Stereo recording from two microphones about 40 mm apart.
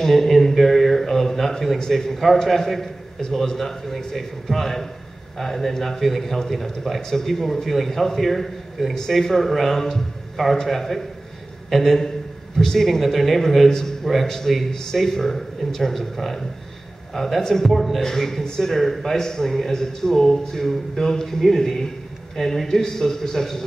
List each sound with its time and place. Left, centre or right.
0.0 s a sound: centre
1.8 s a man's voice: centre
13.7 s a man's voice: centre
17.7 s a man's voice: centre